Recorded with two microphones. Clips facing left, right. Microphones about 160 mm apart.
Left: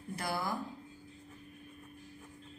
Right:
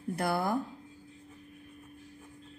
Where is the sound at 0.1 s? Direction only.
55° right (ahead or behind).